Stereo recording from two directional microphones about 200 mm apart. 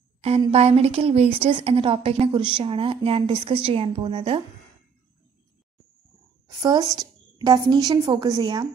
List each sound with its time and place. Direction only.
0.4 s a woman's voice: 30° right (ahead or behind)
6.6 s a woman's voice: 20° right (ahead or behind)